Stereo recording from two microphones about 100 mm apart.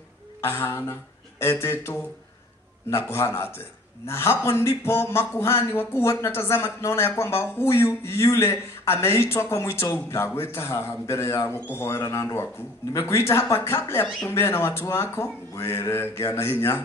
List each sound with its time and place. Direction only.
0.4 s speech: 25° left (ahead or behind)
3.1 s speech: 25° left (ahead or behind)